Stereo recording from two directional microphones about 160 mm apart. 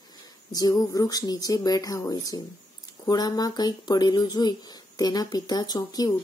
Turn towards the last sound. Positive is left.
turn(degrees=25)  # may be behind; listen again after turning